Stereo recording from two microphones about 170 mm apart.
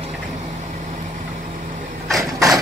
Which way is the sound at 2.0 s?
Centre (ahead or behind).